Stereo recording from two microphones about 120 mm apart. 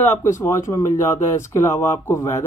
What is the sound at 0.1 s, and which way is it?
Speech, 20° left (ahead or behind).